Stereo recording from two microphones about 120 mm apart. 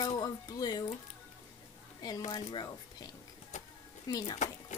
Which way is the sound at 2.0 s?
30° left (ahead or behind).